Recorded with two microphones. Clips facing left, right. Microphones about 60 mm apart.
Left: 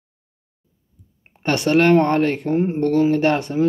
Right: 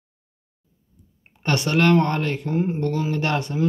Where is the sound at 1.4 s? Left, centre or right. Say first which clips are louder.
Left 4 dB; left.